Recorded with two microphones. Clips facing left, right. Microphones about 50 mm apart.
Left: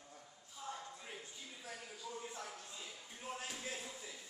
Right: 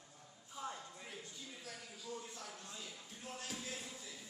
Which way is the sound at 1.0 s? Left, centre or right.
Centre.